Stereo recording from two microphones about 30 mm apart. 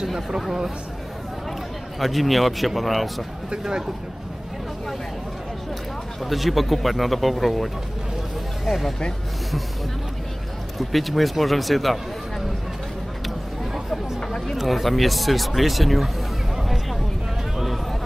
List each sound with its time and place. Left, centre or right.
2.0 s speech: centre
3.6 s speech: centre
6.2 s speech: centre
10.8 s speech: centre
14.5 s speech: centre